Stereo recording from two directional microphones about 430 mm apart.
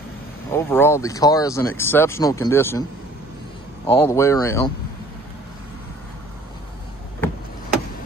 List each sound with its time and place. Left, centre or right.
0.5 s speech: centre
3.8 s speech: centre